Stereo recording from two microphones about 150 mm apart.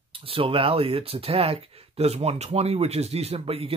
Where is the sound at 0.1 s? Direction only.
40° right (ahead or behind).